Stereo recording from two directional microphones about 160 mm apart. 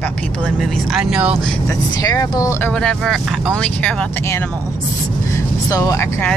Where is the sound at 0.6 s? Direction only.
Centre (ahead or behind).